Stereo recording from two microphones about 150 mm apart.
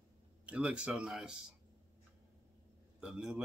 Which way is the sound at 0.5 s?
10° right (ahead or behind).